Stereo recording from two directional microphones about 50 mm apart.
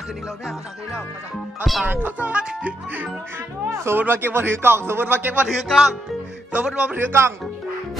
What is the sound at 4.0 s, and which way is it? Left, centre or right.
A man's voice, right.